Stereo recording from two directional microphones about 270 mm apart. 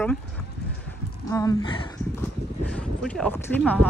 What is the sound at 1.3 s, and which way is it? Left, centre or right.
Speech, centre.